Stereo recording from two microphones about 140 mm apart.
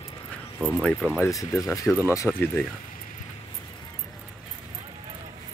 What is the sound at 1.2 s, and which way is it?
Speech, 20° left (ahead or behind).